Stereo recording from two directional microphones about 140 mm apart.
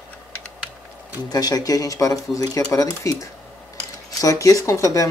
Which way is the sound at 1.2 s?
30° left (ahead or behind).